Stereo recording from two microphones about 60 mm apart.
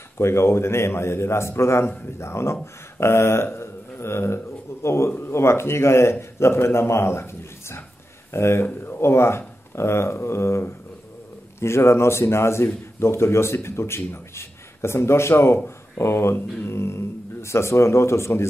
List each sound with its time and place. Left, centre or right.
0.2 s a man's voice: left